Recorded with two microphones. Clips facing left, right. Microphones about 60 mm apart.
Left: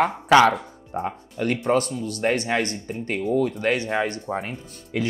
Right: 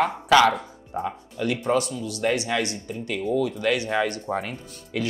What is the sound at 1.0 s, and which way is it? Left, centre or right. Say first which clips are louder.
Speech: left 1 dB; left.